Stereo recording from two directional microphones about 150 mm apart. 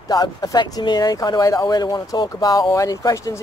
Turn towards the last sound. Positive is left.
turn(degrees=20)  # may be behind; listen again after turning